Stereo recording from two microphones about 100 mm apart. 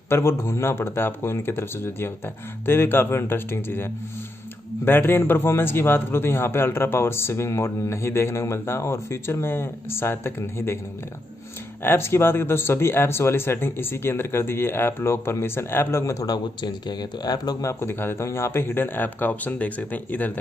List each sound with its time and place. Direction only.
0.1 s a man's voice: 25° left (ahead or behind)
11.8 s a man's voice: 25° left (ahead or behind)